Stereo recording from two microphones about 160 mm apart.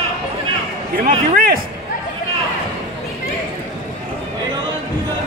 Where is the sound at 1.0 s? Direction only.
65° right (ahead or behind).